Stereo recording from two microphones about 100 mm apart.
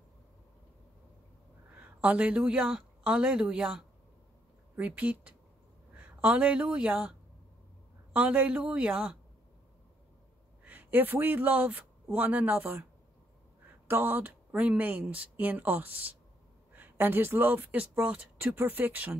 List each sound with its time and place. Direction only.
1.8 s speech: 15° right (ahead or behind)
10.6 s speech: 15° right (ahead or behind)
13.8 s speech: 20° right (ahead or behind)